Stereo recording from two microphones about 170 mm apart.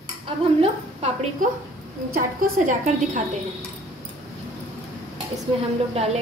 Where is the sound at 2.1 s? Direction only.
50° right (ahead or behind).